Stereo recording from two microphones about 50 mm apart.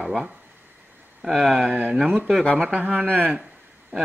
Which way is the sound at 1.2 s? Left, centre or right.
Centre.